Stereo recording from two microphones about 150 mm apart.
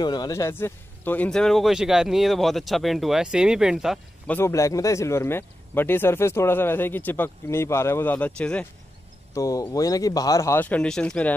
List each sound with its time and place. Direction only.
0.0 s speech: 30° left (ahead or behind); by 4.0 s 5° right (ahead or behind)
4.3 s speech: 15° left (ahead or behind)
9.3 s speech: 20° left (ahead or behind)